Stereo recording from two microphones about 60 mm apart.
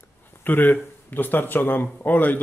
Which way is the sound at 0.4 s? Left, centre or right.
Left.